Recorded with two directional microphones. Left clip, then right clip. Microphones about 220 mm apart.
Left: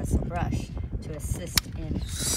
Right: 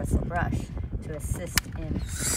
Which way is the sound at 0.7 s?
20° left (ahead or behind).